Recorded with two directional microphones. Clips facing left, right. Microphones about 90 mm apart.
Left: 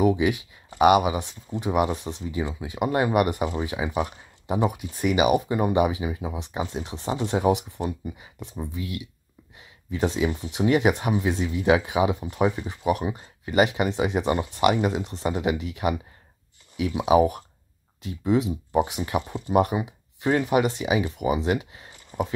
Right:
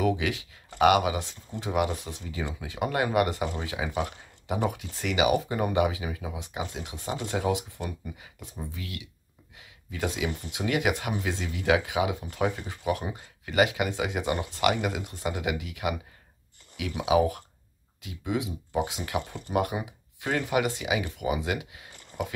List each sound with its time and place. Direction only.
0.0 s speech: 20° left (ahead or behind)
9.6 s a sound: 25° left (ahead or behind)
10.5 s speech: 30° left (ahead or behind)
18.0 s speech: 35° left (ahead or behind)
18.7 s speech: 20° left (ahead or behind)